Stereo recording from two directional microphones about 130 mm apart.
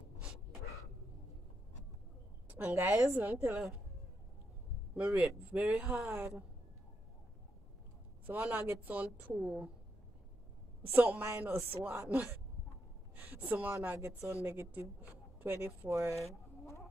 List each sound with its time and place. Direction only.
2.4 s a woman's voice: 15° right (ahead or behind)
4.9 s a man's voice: 5° right (ahead or behind)
5.8 s speech: 20° right (ahead or behind)
8.3 s a woman's voice: 10° right (ahead or behind)
11.1 s a woman's voice: 20° right (ahead or behind)